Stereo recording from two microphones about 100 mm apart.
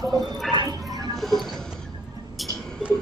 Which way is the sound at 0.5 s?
40° right (ahead or behind).